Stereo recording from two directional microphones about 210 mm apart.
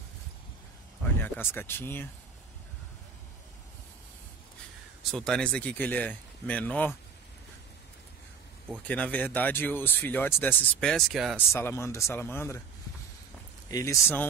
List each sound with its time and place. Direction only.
1.5 s speech: 10° left (ahead or behind)
5.1 s speech: 5° left (ahead or behind)
8.8 s speech: 5° left (ahead or behind)
11.5 s speech: 10° left (ahead or behind)
13.7 s speech: 15° left (ahead or behind)